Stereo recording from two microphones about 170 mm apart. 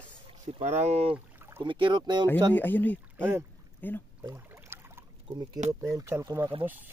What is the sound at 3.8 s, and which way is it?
Speech, 10° left (ahead or behind).